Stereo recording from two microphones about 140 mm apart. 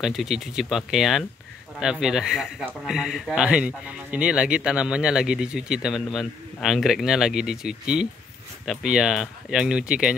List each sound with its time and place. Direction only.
0.0 s speech: centre (ahead or behind)